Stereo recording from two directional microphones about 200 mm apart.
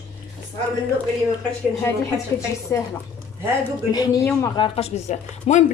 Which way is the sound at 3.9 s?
20° left (ahead or behind).